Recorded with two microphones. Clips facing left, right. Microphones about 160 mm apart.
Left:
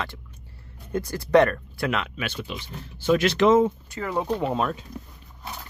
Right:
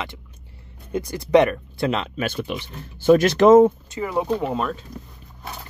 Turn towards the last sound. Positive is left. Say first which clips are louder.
# right 1 dB
turn(degrees=0)  # may be behind; listen again after turning